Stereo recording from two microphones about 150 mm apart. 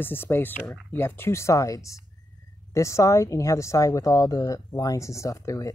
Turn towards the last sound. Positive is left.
turn(degrees=20)  # may be behind; listen again after turning